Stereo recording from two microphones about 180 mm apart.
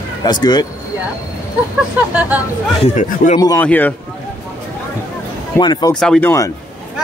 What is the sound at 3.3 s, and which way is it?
Speech, 20° left (ahead or behind).